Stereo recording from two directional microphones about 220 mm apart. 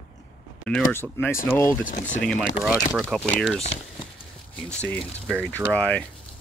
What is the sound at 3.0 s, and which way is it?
Speech, 5° left (ahead or behind).